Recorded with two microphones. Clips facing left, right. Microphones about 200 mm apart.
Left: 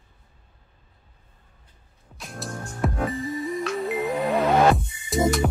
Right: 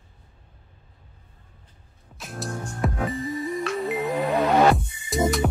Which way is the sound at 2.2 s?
Centre (ahead or behind).